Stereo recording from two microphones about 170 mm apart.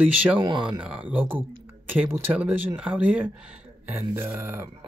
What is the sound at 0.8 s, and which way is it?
Speech, 10° right (ahead or behind).